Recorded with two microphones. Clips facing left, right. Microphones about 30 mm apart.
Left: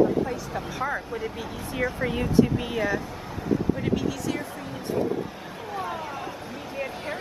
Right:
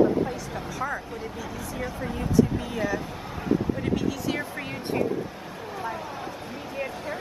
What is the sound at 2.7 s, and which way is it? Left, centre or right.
Speech, centre.